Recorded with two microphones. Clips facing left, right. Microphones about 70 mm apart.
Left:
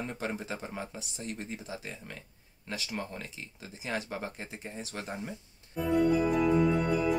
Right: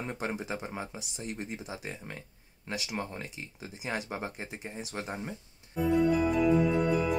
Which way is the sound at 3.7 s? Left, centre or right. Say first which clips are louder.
Even; centre.